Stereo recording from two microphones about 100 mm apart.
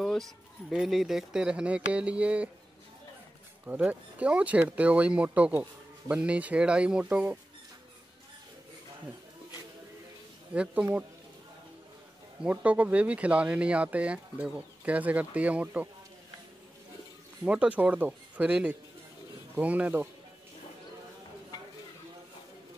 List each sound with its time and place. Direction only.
0.0 s speech: centre (ahead or behind)
3.6 s speech: 15° right (ahead or behind)
10.5 s speech: 10° right (ahead or behind)
12.4 s speech: 15° right (ahead or behind)
17.5 s speech: 10° right (ahead or behind)